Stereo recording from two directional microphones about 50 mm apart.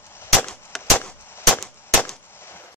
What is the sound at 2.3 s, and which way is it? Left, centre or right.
Gunshot, left.